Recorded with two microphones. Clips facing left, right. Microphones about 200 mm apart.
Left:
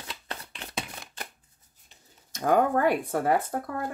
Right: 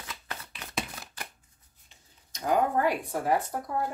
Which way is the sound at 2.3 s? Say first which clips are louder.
Left 3 dB; 55° left (ahead or behind).